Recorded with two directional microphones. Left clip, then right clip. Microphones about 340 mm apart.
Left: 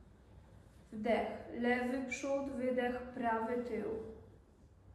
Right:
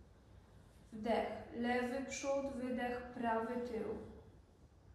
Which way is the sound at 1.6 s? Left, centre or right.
Centre.